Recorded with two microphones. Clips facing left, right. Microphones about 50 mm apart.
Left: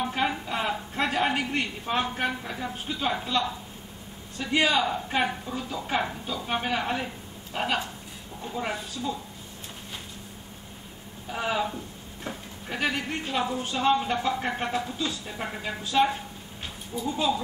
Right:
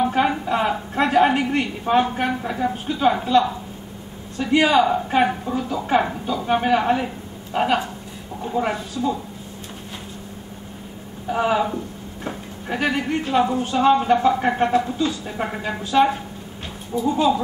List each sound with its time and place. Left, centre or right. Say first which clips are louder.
0.0 s a sound: right 8 dB; centre
0.9 s a man's voice: right 9 dB; centre
11.2 s speech: right 8 dB; centre
15.8 s a man's voice: right 6 dB; centre